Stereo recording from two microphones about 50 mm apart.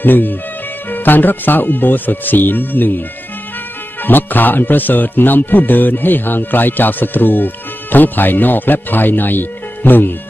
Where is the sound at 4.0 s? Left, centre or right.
Left.